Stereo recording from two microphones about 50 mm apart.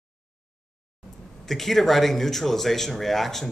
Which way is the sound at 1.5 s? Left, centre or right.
Centre.